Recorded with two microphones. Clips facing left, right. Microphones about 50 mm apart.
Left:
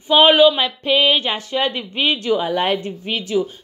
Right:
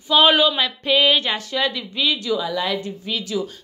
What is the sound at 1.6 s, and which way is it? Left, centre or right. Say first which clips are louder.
Speech: left 2 dB; left.